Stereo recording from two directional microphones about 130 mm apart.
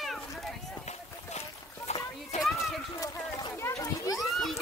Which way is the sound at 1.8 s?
60° left (ahead or behind).